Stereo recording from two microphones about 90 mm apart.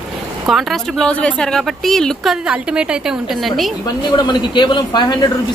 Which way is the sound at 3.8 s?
55° left (ahead or behind).